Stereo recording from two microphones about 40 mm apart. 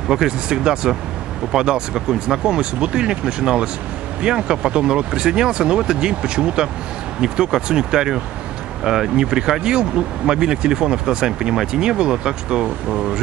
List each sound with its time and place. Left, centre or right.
0.1 s speech: centre